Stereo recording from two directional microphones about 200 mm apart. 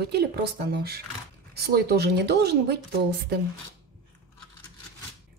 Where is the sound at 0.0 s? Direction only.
55° right (ahead or behind).